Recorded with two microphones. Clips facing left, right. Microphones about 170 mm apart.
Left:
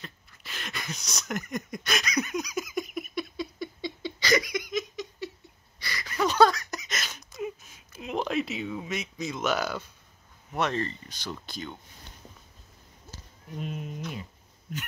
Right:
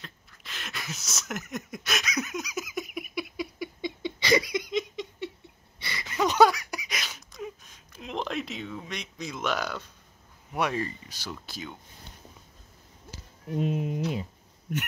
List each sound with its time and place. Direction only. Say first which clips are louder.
0.0 s a sound: left 2 dB; centre (ahead or behind)
10.5 s speech: even; 10° right (ahead or behind)
13.6 s speech: right 8 dB; 20° right (ahead or behind)